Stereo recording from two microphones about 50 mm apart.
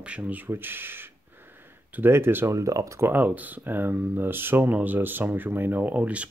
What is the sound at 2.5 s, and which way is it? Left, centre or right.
Speech, right.